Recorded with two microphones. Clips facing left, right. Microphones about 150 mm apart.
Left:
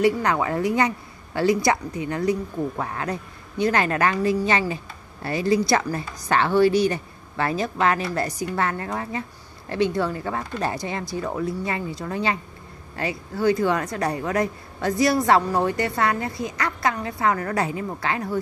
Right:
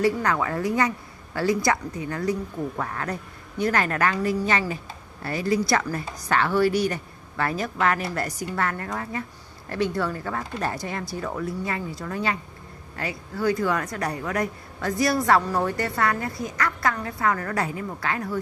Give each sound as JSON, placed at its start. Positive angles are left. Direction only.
{"t": 0.0, "sound": "speech", "side_deg": 20}